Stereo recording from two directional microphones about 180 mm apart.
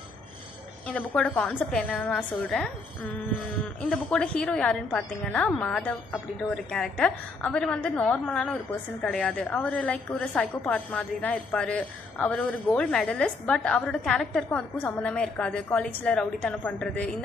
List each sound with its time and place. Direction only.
0.8 s a woman's voice: 5° left (ahead or behind)
3.9 s a woman's voice: 5° left (ahead or behind)